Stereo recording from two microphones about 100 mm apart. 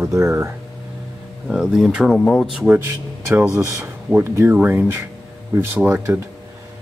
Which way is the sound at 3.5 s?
25° right (ahead or behind).